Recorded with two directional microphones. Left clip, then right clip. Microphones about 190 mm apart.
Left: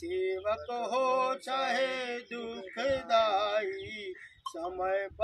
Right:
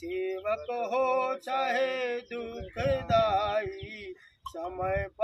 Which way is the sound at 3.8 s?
Centre (ahead or behind).